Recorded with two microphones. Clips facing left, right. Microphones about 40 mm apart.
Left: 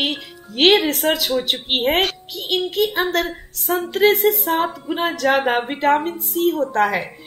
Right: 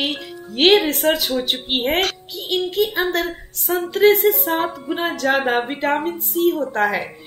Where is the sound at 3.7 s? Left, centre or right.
Centre.